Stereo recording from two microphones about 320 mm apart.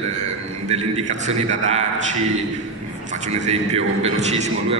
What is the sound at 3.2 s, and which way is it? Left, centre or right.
A man's voice, right.